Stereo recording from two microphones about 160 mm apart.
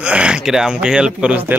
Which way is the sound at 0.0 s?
5° right (ahead or behind).